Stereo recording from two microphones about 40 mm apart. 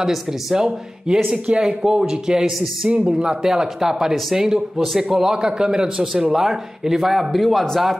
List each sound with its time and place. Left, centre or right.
0.0 s a man's voice: centre